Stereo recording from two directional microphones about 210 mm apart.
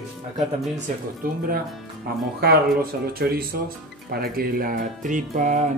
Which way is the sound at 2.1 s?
45° right (ahead or behind).